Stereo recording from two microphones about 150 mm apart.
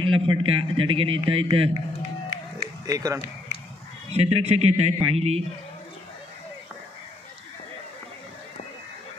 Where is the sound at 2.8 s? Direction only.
25° right (ahead or behind).